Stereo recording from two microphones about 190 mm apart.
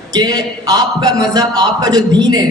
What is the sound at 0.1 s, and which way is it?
A man's voice, 20° right (ahead or behind).